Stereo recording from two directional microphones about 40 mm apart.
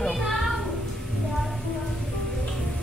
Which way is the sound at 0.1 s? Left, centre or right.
Centre.